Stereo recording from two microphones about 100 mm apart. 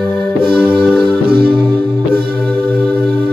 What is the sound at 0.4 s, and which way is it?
Music, 55° right (ahead or behind).